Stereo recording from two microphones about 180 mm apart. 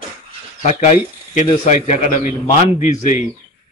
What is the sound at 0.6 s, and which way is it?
A man's voice, 40° left (ahead or behind).